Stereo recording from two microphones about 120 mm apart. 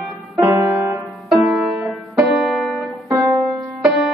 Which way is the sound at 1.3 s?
Centre (ahead or behind).